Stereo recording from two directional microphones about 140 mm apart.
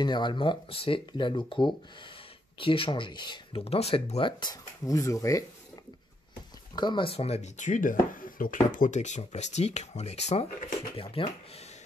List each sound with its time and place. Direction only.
0.0 s speech: 35° left (ahead or behind)
3.6 s speech: 45° left (ahead or behind); by 5.4 s 20° left (ahead or behind)
6.7 s speech: 30° left (ahead or behind); by 10.4 s 50° left (ahead or behind)
11.0 s speech: 40° left (ahead or behind)